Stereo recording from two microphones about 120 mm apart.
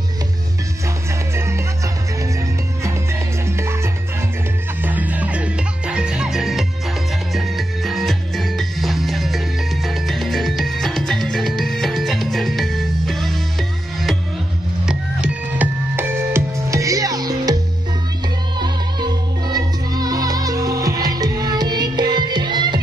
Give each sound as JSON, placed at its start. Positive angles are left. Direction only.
{"t": 1.3, "sound": "music", "side_deg": -25}
{"t": 2.8, "sound": "music", "side_deg": -20}
{"t": 18.6, "sound": "music", "side_deg": -35}